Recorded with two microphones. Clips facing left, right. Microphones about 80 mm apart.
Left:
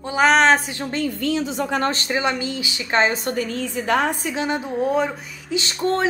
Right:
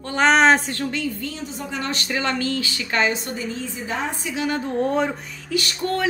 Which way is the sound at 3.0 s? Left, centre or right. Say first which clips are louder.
Left 3 dB; left.